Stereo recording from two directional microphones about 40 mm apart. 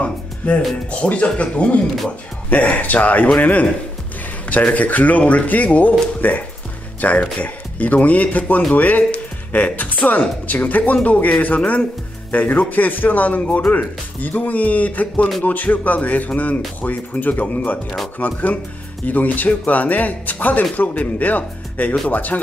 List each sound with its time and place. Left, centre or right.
0.4 s speech: left
4.7 s speech: left
13.4 s speech: left
13.7 s speech: left